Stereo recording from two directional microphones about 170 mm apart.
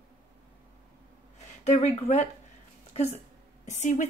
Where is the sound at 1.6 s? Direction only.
40° left (ahead or behind).